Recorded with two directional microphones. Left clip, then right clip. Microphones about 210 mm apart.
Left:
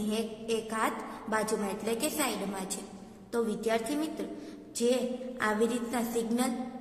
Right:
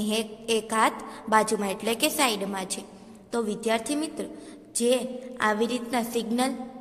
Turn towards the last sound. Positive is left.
turn(degrees=-30)  # may be behind; listen again after turning